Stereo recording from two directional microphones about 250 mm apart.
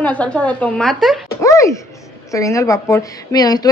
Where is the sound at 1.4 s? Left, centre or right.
Centre.